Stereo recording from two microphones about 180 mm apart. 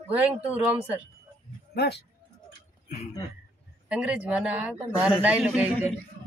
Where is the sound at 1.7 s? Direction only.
65° left (ahead or behind).